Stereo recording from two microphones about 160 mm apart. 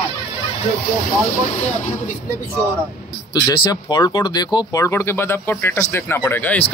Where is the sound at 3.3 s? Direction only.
25° left (ahead or behind).